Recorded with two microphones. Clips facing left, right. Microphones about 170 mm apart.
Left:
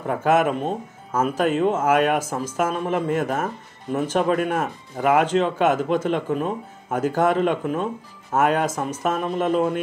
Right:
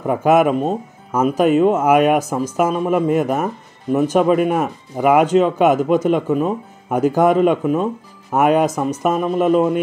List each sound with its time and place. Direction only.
0.0 s speech: 15° right (ahead or behind)